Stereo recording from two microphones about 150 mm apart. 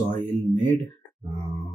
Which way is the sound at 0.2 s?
15° left (ahead or behind).